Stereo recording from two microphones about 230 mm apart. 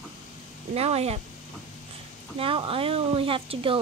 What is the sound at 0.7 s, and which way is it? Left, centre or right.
Speech, right.